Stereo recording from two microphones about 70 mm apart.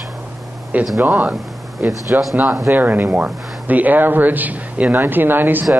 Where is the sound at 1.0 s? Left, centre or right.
Centre.